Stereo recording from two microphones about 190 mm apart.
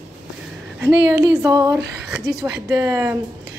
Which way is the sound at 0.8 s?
15° right (ahead or behind).